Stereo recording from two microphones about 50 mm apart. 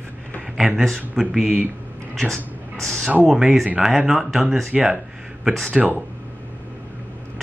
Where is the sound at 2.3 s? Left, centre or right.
Centre.